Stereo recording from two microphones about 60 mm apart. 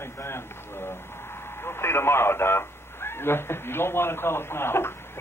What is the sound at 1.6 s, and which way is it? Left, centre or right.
A man's voice, left.